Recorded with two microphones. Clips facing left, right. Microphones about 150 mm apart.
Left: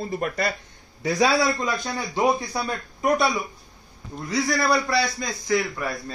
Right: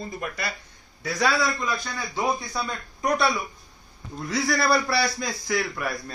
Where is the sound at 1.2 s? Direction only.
20° left (ahead or behind).